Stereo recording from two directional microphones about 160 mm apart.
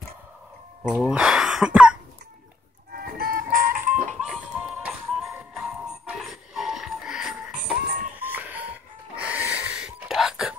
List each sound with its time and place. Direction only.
0.8 s speech: 10° left (ahead or behind)
1.1 s throat clearing: 5° right (ahead or behind)
2.9 s music: 70° right (ahead or behind)
4.2 s music: 5° right (ahead or behind)